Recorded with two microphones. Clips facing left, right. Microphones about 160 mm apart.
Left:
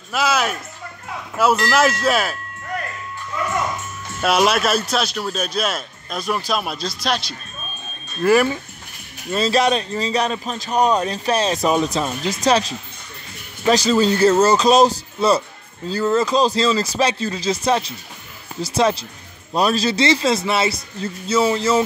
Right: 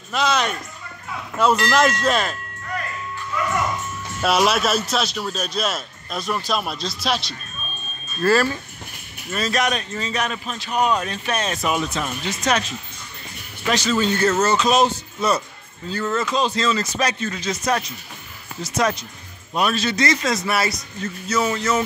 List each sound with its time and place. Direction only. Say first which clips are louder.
0.1 s speech: left 1 dB; 5° left (ahead or behind)
4.2 s a man's voice: left 2 dB; centre (ahead or behind)
8.2 s speech: left 3 dB; 15° left (ahead or behind)
9.3 s a man's voice: left 5 dB; 30° left (ahead or behind)